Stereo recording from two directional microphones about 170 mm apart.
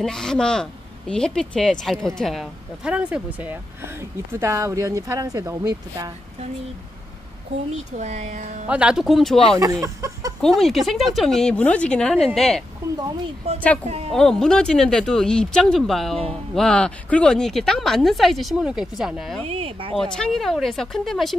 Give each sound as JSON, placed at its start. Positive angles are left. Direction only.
{"t": 0.0, "sound": "speech", "side_deg": 5}
{"t": 7.7, "sound": "speech", "side_deg": -45}
{"t": 8.6, "sound": "speech", "side_deg": -5}
{"t": 9.6, "sound": "speech", "side_deg": -20}
{"t": 10.4, "sound": "speech", "side_deg": 0}
{"t": 12.8, "sound": "speech", "side_deg": -20}
{"t": 13.8, "sound": "speech", "side_deg": -35}
{"t": 14.1, "sound": "speech", "side_deg": 5}
{"t": 19.4, "sound": "speech", "side_deg": -35}
{"t": 20.0, "sound": "speech", "side_deg": 5}